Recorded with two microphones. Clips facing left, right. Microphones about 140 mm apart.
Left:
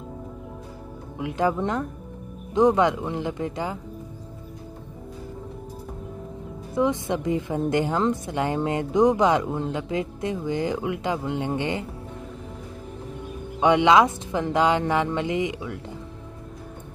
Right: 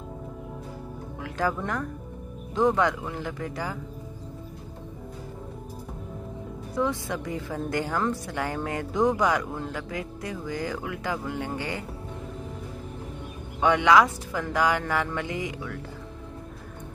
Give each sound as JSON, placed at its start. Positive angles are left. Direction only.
{"t": 1.2, "sound": "a woman's voice", "side_deg": 20}
{"t": 6.7, "sound": "a woman's voice", "side_deg": 20}
{"t": 13.6, "sound": "a woman's voice", "side_deg": 20}